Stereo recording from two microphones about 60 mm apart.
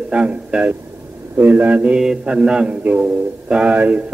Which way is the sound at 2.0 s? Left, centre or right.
Centre.